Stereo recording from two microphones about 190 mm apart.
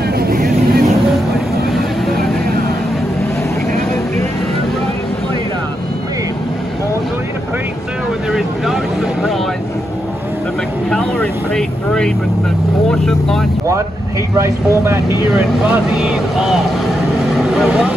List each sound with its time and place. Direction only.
0.2 s vehicle: 50° right (ahead or behind)
1.7 s vehicle: centre (ahead or behind)
8.3 s vehicle: centre (ahead or behind)
10.9 s vehicle: 5° left (ahead or behind)
14.3 s speech: 15° right (ahead or behind)
15.3 s speech: 5° right (ahead or behind)
17.3 s vehicle: centre (ahead or behind)